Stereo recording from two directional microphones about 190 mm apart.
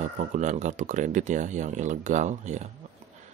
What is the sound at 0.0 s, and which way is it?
Speech, 40° right (ahead or behind).